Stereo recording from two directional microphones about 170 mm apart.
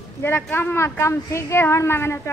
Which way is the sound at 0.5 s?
15° left (ahead or behind).